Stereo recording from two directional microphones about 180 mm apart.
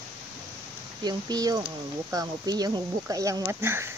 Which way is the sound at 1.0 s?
20° right (ahead or behind).